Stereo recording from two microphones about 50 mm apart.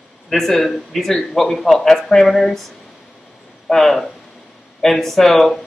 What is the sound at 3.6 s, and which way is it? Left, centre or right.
Speech, centre.